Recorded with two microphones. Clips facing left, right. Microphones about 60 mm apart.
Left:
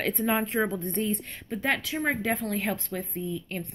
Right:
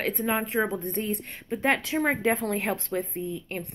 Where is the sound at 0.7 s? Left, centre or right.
Right.